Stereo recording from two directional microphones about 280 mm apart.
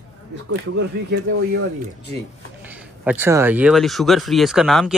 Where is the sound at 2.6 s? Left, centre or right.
Centre.